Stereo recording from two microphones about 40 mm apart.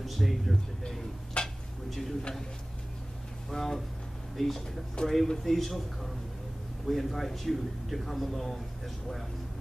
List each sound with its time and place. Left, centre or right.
0.0 s a man's voice: centre
1.4 s a sound: left
1.9 s speech: centre
3.4 s a man's voice: centre